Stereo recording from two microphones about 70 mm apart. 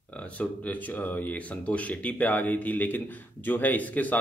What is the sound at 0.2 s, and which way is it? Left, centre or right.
Speech, left.